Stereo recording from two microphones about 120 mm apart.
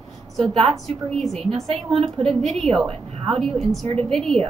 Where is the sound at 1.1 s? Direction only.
Centre (ahead or behind).